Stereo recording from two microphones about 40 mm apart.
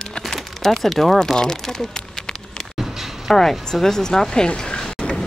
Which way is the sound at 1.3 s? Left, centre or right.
Centre.